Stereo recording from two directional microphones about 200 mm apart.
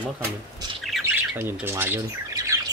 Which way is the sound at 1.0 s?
10° right (ahead or behind).